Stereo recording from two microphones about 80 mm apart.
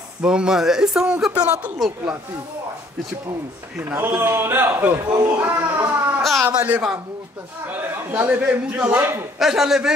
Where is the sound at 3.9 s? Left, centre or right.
Right.